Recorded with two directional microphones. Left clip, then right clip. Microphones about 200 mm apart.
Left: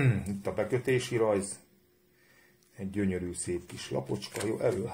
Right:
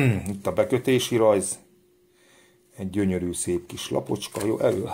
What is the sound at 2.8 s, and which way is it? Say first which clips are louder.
Speech: right 7 dB; 40° right (ahead or behind).